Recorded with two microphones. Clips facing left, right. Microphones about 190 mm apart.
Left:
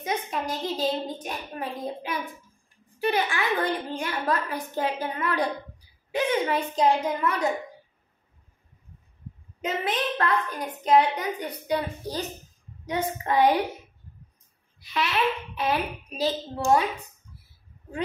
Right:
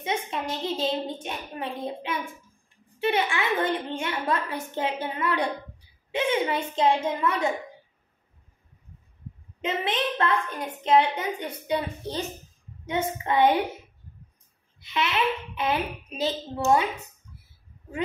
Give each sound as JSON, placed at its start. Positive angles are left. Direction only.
{"t": 0.0, "sound": "a child's voice", "side_deg": -25}
{"t": 9.7, "sound": "a child's voice", "side_deg": -25}
{"t": 14.8, "sound": "a child's voice", "side_deg": -25}